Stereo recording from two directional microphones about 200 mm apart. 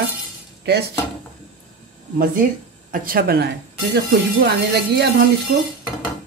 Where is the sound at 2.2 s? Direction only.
45° right (ahead or behind).